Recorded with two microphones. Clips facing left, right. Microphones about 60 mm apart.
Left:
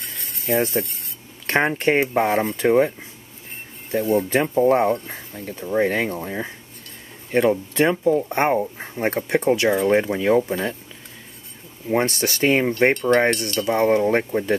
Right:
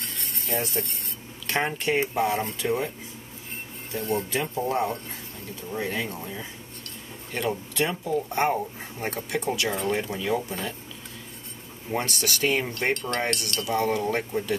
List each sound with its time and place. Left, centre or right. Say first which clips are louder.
0.0 s a sound: left 3 dB; centre
0.8 s speech: left 4 dB; left
2.0 s speech: left 6 dB; left
4.0 s speech: left 7 dB; centre
4.3 s speech: left 10 dB; left
11.9 s speech: left 7 dB; left
12.9 s cowbell: left 10 dB; centre
13.7 s speech: left 7 dB; left